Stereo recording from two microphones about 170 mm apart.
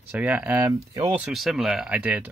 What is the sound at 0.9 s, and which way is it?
Speech, 25° right (ahead or behind).